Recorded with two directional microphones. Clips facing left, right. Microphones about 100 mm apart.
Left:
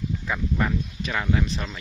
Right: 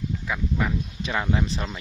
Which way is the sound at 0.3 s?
Centre (ahead or behind).